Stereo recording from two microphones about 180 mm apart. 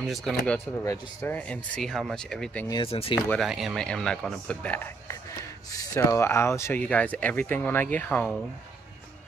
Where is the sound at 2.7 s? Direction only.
30° left (ahead or behind).